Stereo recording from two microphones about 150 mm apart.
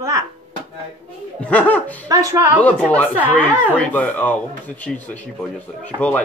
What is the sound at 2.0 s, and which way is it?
Speech, 25° right (ahead or behind).